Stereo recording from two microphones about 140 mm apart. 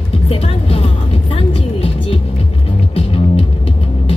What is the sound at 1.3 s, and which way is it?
Music, 40° left (ahead or behind).